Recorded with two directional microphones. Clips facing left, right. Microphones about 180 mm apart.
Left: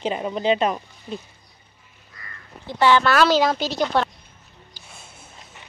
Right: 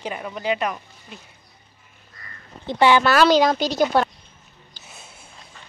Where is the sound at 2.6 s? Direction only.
15° right (ahead or behind).